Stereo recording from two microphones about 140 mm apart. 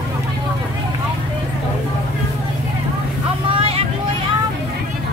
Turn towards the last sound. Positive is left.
turn(degrees=-45)  # may be behind; listen again after turning